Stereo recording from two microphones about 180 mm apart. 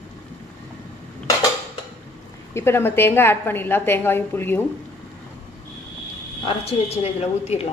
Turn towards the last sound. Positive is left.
turn(degrees=35)  # may be behind; listen again after turning